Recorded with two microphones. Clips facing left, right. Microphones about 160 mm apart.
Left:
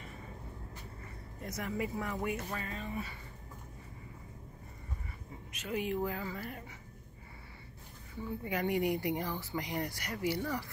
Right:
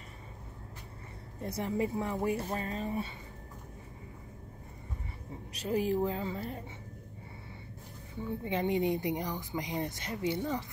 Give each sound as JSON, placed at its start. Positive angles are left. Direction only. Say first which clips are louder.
{"t": 1.4, "sound": "speech", "louder": "right 5 dB", "side_deg": -30}
{"t": 5.5, "sound": "speech", "louder": "right 5 dB", "side_deg": -35}
{"t": 8.5, "sound": "speech", "louder": "right 2 dB", "side_deg": -25}